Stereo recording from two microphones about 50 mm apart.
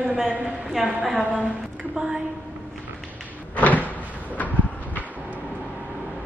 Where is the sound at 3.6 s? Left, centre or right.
Left.